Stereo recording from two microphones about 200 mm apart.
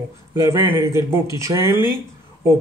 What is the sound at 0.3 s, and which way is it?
Speech, 15° right (ahead or behind).